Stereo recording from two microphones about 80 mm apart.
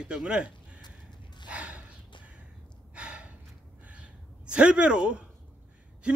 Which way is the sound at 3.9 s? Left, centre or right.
Centre.